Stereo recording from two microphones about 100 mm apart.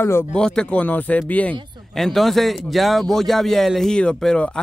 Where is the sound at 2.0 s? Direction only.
5° left (ahead or behind).